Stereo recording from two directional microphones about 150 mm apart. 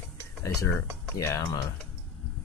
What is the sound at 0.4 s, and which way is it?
Speech, 15° left (ahead or behind).